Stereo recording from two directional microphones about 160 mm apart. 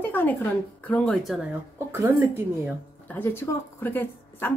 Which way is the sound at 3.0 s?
10° left (ahead or behind).